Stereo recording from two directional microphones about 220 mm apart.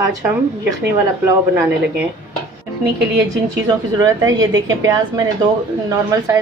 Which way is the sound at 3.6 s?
15° right (ahead or behind).